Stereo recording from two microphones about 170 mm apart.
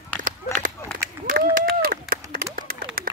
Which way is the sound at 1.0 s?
55° right (ahead or behind).